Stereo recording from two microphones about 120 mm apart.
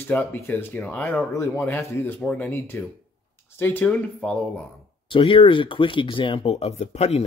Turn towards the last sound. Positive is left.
turn(degrees=60)  # may be behind; listen again after turning